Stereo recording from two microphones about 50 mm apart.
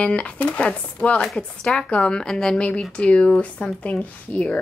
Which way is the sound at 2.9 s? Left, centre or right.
Left.